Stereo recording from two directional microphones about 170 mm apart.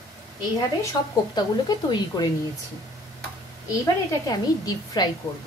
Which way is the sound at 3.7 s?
20° left (ahead or behind).